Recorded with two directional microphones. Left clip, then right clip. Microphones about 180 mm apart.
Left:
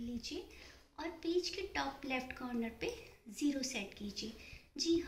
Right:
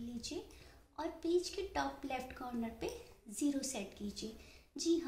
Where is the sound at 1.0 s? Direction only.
45° right (ahead or behind).